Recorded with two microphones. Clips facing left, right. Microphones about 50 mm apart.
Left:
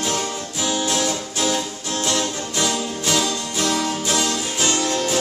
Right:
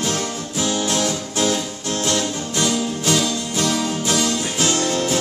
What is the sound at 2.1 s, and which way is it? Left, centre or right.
Music, centre.